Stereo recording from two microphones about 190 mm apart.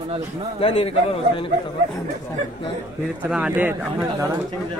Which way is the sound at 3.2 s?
5° right (ahead or behind).